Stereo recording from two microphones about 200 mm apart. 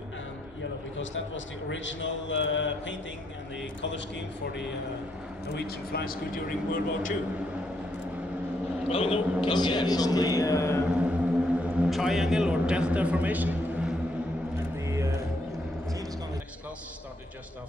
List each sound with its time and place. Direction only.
0.9 s a man's voice: 70° left (ahead or behind)
5.5 s a man's voice: 55° left (ahead or behind)
8.8 s a man's voice: 30° left (ahead or behind)
10.9 s a sound: 5° right (ahead or behind)
11.9 s a man's voice: centre (ahead or behind)